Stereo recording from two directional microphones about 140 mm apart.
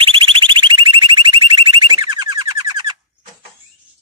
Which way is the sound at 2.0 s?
30° right (ahead or behind).